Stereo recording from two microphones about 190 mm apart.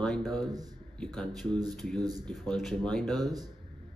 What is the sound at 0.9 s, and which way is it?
Speech, 5° left (ahead or behind).